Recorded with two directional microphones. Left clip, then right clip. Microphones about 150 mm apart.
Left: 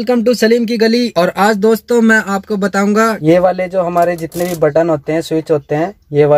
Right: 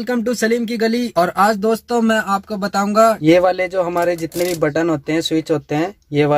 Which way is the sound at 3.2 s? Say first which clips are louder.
Left 2 dB; 25° right (ahead or behind).